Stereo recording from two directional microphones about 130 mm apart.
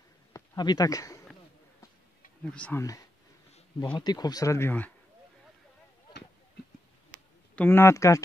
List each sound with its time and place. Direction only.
0.3 s a sound: 30° left (ahead or behind)
2.4 s speech: 10° left (ahead or behind)
3.9 s speech: 30° left (ahead or behind); by 4.9 s 15° left (ahead or behind)
7.5 s speech: 15° left (ahead or behind)